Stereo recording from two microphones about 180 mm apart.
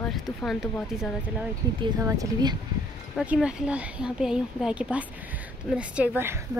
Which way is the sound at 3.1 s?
5° right (ahead or behind).